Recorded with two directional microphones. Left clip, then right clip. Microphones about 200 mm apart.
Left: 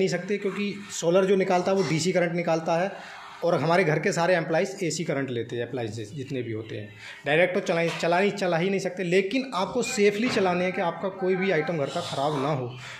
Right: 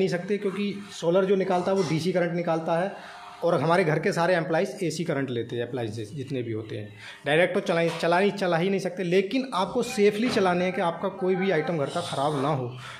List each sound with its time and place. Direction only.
0.0 s speech: centre (ahead or behind)
1.0 s speech: 10° left (ahead or behind)
7.2 s speech: 5° right (ahead or behind)